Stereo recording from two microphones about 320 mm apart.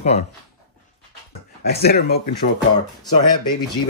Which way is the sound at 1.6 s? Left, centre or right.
Left.